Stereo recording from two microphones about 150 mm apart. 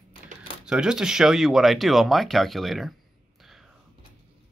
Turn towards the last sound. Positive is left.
turn(degrees=0)  # may be behind; listen again after turning